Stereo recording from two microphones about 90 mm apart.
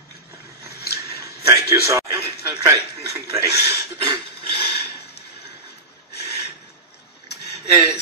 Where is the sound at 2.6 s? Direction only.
35° right (ahead or behind).